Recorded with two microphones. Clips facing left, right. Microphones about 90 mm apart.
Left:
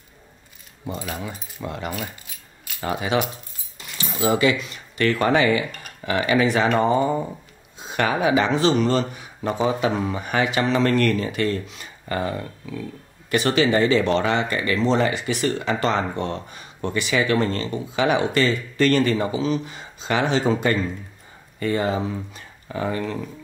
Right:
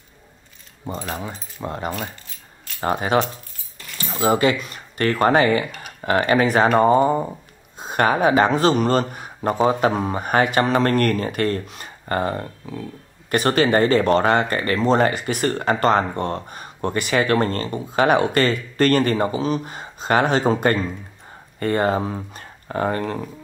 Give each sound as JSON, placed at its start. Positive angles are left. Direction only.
{"t": 1.6, "sound": "speech", "side_deg": -40}
{"t": 2.0, "sound": "keys jangling", "side_deg": 5}
{"t": 2.8, "sound": "speech", "side_deg": -45}
{"t": 21.5, "sound": "speech", "side_deg": -50}